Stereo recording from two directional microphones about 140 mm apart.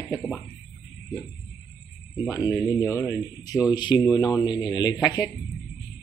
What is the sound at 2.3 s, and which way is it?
Speech, 25° left (ahead or behind).